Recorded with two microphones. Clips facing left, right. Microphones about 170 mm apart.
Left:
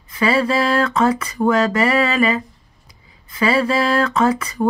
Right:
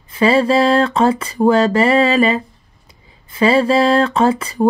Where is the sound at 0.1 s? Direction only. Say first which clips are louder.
Right 4 dB; 30° right (ahead or behind).